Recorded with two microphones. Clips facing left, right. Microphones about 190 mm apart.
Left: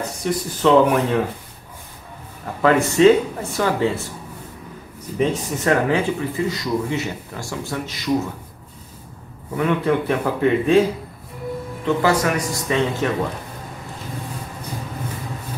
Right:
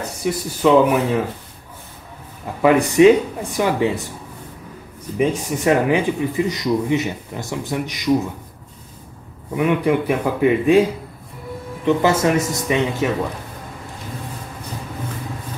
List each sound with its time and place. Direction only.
0.2 s speech: 10° right (ahead or behind)
2.6 s speech: 15° right (ahead or behind)
5.1 s speech: 10° right (ahead or behind)
9.6 s speech: 10° right (ahead or behind)
11.8 s a man's voice: 20° right (ahead or behind)